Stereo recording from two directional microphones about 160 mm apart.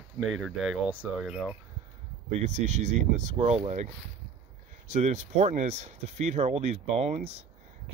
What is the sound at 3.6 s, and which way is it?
Speech, 45° right (ahead or behind).